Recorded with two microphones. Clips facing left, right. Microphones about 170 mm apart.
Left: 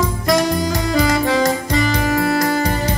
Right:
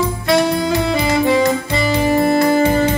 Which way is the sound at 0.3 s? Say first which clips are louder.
Right 2 dB; 40° left (ahead or behind).